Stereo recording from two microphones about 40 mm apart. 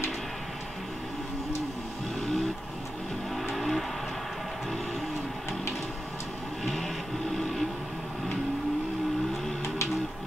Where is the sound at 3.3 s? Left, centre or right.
Centre.